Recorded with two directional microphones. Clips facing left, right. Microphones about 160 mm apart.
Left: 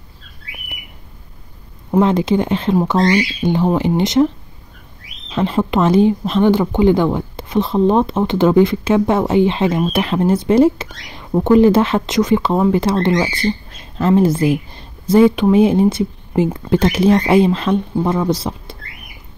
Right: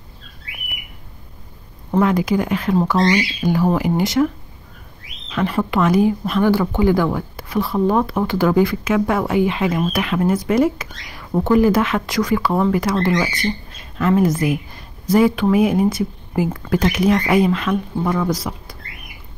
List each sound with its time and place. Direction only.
2.0 s a woman's voice: 25° left (ahead or behind)
2.9 s speech: 10° left (ahead or behind)
3.4 s a woman's voice: 25° left (ahead or behind)
5.3 s a woman's voice: 25° left (ahead or behind)